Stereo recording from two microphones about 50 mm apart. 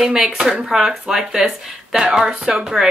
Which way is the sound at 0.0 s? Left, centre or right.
Centre.